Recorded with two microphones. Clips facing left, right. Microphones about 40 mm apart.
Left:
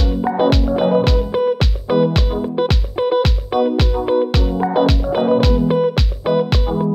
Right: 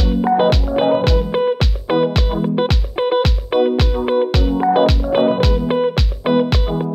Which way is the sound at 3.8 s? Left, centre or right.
Centre.